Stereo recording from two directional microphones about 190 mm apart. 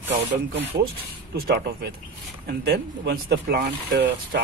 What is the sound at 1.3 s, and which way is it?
Speech, 60° right (ahead or behind).